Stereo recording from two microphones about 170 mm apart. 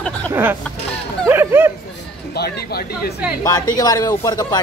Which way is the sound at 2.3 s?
70° left (ahead or behind).